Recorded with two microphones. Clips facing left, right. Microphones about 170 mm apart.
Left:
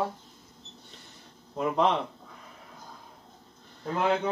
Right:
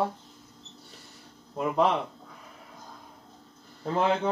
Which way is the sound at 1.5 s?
5° right (ahead or behind).